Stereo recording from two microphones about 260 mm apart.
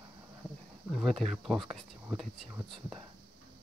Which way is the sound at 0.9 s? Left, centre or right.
Centre.